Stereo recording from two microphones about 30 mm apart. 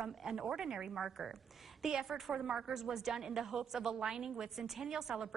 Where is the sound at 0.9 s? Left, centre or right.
Centre.